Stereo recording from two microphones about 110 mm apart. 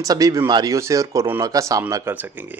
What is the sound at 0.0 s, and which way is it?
Speech, 35° right (ahead or behind).